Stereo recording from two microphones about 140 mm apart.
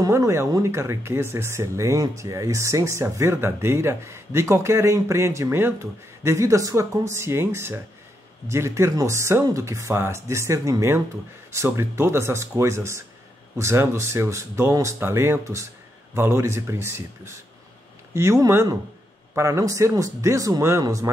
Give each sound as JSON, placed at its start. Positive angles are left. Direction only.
{"t": 0.0, "sound": "speech", "side_deg": -25}